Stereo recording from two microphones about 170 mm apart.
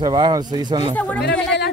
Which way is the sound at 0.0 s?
25° right (ahead or behind).